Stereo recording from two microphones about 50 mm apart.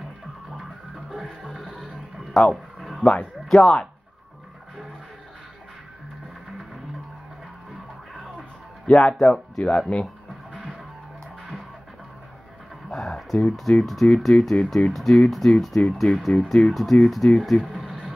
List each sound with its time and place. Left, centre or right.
1.2 s music: centre
1.8 s a sound: centre
3.0 s speech: centre
8.4 s music: centre
9.3 s speech: centre
12.9 s speech: centre
17.6 s a sound: centre